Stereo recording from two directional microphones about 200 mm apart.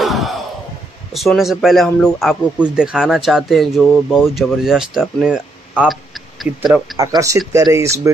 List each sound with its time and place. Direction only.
0.0 s a sound: centre (ahead or behind)
1.1 s speech: centre (ahead or behind)
7.0 s speech: 15° right (ahead or behind)